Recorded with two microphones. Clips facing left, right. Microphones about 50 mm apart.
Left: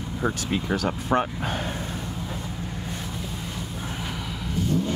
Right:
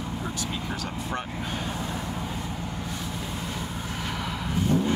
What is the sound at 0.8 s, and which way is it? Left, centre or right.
Speech, left.